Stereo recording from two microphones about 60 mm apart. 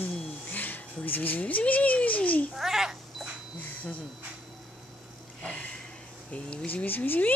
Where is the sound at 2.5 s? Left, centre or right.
Centre.